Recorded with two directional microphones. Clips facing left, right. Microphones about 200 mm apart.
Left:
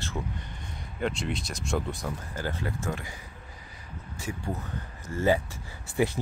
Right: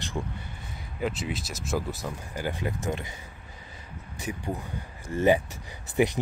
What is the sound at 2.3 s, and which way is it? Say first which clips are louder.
Speech: right 4 dB; 15° right (ahead or behind).